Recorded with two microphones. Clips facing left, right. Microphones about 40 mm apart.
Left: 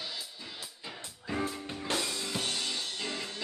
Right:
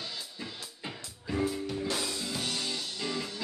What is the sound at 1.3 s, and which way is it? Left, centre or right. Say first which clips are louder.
Music: right 3 dB; left.